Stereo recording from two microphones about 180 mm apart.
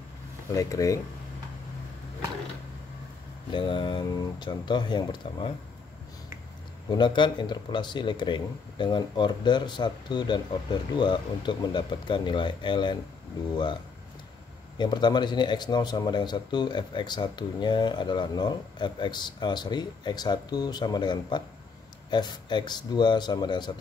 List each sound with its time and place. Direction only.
0.5 s speech: 20° left (ahead or behind)
3.5 s a man's voice: 25° left (ahead or behind)
6.9 s a man's voice: 25° left (ahead or behind)
14.8 s a man's voice: 25° left (ahead or behind)